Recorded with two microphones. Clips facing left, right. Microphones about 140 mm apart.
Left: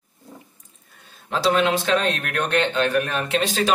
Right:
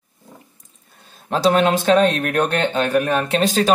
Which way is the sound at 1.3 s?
40° right (ahead or behind).